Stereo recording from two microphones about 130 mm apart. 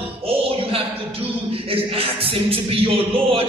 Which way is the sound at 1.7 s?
45° right (ahead or behind).